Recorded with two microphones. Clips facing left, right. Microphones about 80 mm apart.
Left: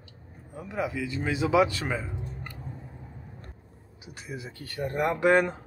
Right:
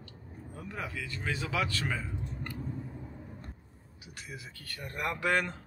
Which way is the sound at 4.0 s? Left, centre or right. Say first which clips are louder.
Left 6 dB; left.